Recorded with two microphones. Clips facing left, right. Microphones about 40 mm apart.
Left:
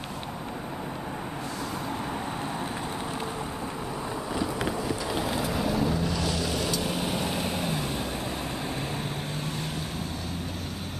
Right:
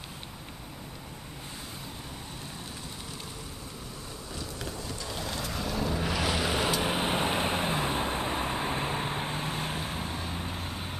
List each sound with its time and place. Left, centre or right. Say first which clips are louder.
4.4 s boat: left 9 dB; left; by 5.9 s centre
5.9 s vehicle: left 1 dB; right